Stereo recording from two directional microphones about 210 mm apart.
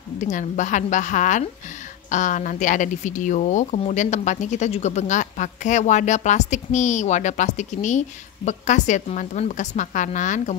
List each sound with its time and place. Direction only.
0.2 s speech: 35° left (ahead or behind)